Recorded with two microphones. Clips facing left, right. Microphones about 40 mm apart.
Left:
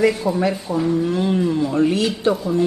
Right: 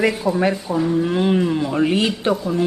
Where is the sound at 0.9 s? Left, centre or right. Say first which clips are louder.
Right 2 dB; right.